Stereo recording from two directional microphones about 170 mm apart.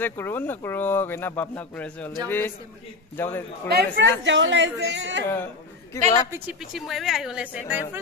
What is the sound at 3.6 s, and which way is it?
A woman's voice, 80° right.